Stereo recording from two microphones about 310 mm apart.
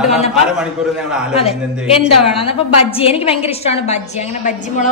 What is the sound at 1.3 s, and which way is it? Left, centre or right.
A woman's voice, centre.